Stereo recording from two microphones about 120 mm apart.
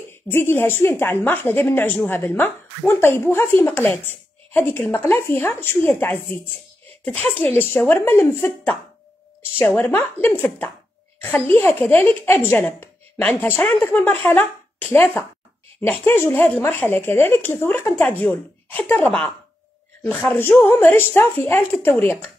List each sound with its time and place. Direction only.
0.3 s speech: 20° left (ahead or behind)
9.4 s a sound: 20° left (ahead or behind)
9.8 s a woman's voice: 20° left (ahead or behind)
20.1 s speech: 10° left (ahead or behind)